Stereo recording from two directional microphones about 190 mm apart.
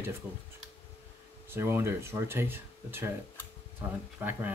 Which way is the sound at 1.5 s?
15° right (ahead or behind).